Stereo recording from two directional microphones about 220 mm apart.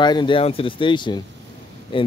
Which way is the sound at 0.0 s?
20° left (ahead or behind).